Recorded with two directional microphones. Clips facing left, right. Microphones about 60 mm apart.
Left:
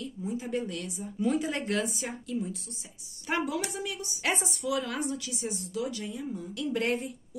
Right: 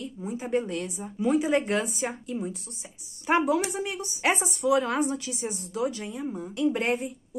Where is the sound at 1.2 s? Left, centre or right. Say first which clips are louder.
Right 5 dB; centre.